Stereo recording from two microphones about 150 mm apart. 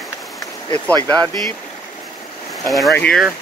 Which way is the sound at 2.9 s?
10° left (ahead or behind).